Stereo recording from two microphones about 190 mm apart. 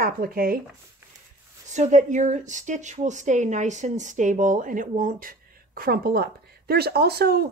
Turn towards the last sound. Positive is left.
turn(degrees=-55)  # may be behind; listen again after turning